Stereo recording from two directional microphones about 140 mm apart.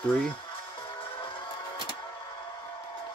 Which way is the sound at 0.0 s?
10° left (ahead or behind).